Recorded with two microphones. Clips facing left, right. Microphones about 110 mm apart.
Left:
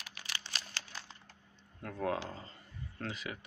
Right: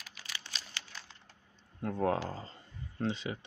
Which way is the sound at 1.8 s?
35° right (ahead or behind).